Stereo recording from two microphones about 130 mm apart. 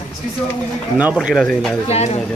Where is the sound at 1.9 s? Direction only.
55° left (ahead or behind).